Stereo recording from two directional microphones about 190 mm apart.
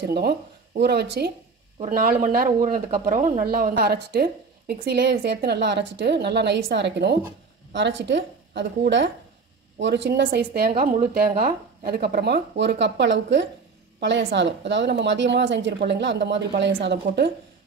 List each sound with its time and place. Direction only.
0.0 s speech: 55° right (ahead or behind)